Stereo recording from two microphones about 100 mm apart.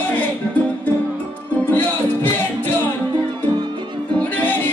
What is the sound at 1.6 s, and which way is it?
Music, 20° left (ahead or behind).